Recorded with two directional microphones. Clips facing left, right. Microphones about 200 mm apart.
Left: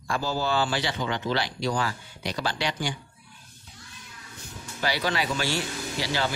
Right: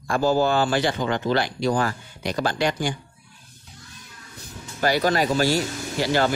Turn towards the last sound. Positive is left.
turn(degrees=-50)  # may be behind; listen again after turning